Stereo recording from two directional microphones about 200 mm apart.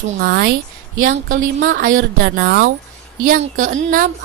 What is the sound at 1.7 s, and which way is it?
A woman's voice, 45° right (ahead or behind).